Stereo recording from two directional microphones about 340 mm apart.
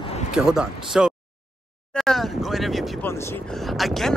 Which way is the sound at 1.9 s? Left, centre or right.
Centre.